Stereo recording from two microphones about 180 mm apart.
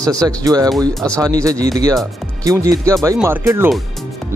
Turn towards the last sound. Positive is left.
turn(degrees=-15)  # may be behind; listen again after turning